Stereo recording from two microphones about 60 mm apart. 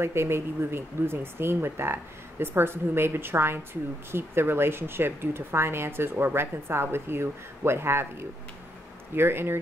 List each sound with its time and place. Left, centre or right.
0.0 s speech: right